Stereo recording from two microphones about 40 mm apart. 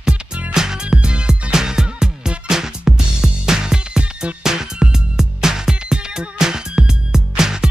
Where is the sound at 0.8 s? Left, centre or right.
Right.